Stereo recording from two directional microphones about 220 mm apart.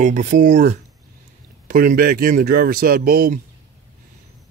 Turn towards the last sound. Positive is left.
turn(degrees=-40)  # may be behind; listen again after turning